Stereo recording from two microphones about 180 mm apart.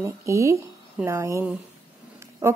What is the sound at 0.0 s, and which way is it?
Speech, 15° right (ahead or behind).